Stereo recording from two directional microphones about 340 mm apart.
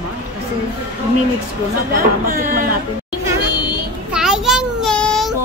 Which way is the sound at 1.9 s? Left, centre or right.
Right.